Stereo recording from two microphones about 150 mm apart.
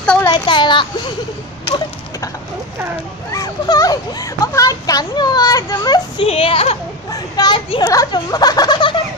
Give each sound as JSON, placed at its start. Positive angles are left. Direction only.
{"t": 0.0, "sound": "a sound", "side_deg": 10}
{"t": 0.3, "sound": "a child's voice", "side_deg": 30}
{"t": 3.3, "sound": "speech", "side_deg": 25}
{"t": 6.2, "sound": "a child's voice", "side_deg": 40}
{"t": 7.1, "sound": "speech", "side_deg": 25}